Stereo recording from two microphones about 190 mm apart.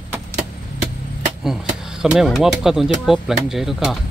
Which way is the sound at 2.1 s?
Centre (ahead or behind).